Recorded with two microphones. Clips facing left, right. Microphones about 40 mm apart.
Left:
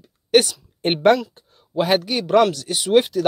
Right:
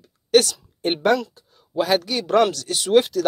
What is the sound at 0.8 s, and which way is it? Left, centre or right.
Speech, left.